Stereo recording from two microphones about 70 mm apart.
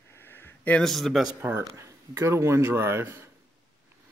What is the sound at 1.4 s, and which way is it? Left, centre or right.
Speech, right.